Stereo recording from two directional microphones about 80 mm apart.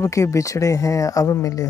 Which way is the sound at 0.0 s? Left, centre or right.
Left.